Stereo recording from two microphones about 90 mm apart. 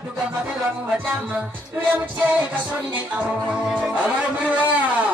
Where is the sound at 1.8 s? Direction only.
20° right (ahead or behind).